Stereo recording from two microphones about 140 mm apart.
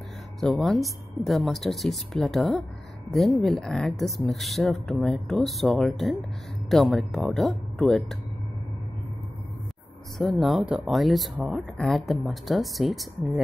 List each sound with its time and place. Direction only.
0.4 s speech: centre (ahead or behind)
10.1 s speech: centre (ahead or behind)